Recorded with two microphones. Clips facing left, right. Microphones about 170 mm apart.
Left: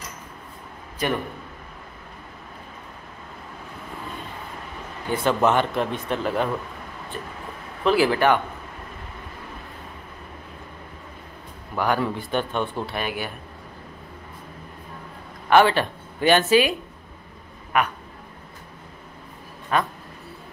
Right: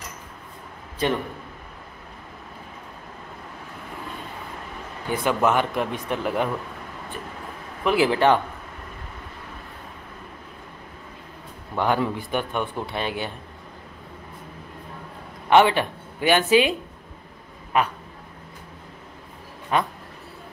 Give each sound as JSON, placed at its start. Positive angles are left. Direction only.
{"t": 5.2, "sound": "speech", "side_deg": -10}
{"t": 7.8, "sound": "speech", "side_deg": -20}
{"t": 11.7, "sound": "speech", "side_deg": -20}
{"t": 12.9, "sound": "speech", "side_deg": -25}
{"t": 15.5, "sound": "a woman's voice", "side_deg": -15}
{"t": 17.7, "sound": "speech", "side_deg": -30}
{"t": 19.7, "sound": "speech", "side_deg": -20}